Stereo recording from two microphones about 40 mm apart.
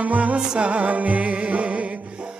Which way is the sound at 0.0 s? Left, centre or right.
Right.